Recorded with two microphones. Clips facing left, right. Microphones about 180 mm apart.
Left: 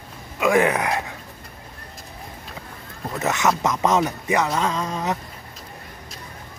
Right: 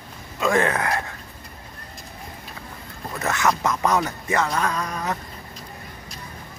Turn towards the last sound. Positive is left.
turn(degrees=20)  # may be behind; listen again after turning